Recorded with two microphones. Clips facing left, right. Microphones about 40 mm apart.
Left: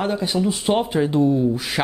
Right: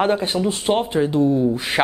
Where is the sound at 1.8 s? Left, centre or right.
Right.